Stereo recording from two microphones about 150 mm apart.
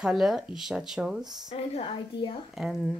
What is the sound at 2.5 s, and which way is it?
Speech, centre (ahead or behind).